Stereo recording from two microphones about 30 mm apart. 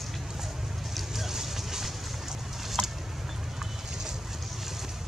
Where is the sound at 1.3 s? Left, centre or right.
Centre.